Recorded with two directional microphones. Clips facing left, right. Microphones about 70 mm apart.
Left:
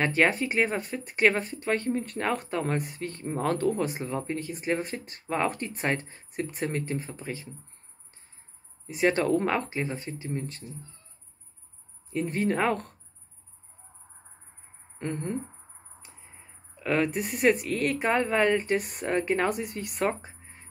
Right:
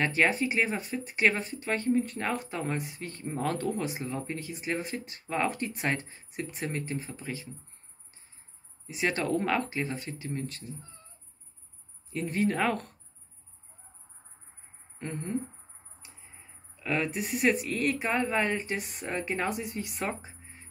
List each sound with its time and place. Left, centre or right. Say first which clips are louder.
0.0 s speech: left 2 dB; left
8.8 s speech: left 5 dB; left
12.1 s speech: left 1 dB; left
15.0 s speech: left 4 dB; left
16.8 s speech: left 4 dB; left